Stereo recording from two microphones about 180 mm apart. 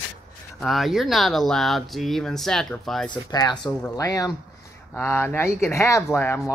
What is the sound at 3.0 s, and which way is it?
Speech, 25° left (ahead or behind).